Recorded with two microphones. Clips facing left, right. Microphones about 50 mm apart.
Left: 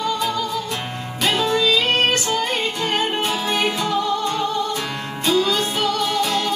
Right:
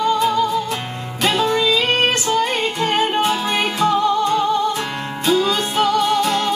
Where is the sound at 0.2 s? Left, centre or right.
Centre.